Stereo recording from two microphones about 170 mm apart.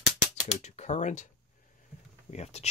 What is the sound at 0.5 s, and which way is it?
Typing, 40° left (ahead or behind).